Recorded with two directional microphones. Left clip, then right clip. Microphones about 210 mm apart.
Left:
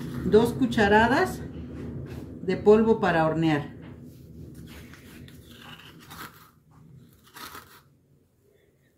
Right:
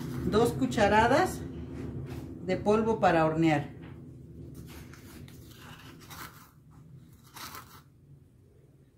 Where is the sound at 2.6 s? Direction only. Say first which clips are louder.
Left 6 dB; 15° right (ahead or behind).